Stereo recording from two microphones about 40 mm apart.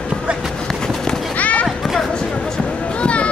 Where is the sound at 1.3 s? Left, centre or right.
Left.